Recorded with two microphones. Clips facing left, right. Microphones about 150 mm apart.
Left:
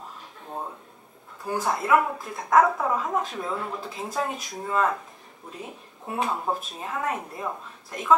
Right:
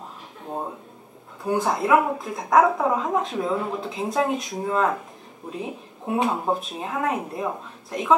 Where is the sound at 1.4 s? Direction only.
Centre (ahead or behind).